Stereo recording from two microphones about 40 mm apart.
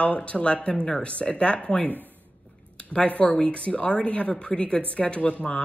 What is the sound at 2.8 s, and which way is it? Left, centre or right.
A woman's voice, left.